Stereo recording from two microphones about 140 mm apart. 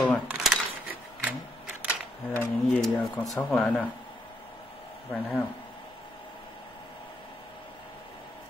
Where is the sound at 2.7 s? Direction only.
5° left (ahead or behind).